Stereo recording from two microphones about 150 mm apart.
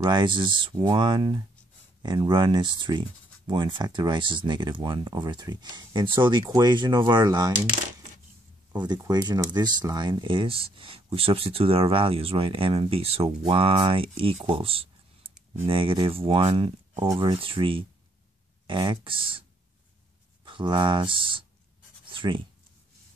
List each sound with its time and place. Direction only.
0.0 s speech: 30° right (ahead or behind)
8.7 s speech: 30° right (ahead or behind)
20.4 s speech: 35° right (ahead or behind)
22.1 s writing: 35° right (ahead or behind)